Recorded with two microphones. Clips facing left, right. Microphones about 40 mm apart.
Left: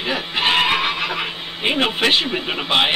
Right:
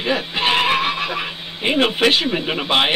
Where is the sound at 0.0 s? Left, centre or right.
Centre.